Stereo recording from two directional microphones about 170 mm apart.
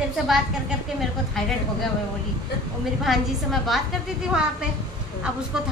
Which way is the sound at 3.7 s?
Centre (ahead or behind).